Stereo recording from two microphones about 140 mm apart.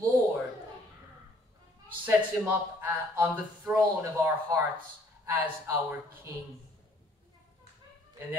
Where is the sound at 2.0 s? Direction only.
10° right (ahead or behind).